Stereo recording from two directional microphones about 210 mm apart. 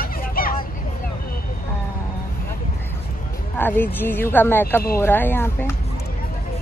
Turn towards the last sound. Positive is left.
turn(degrees=10)  # may be behind; listen again after turning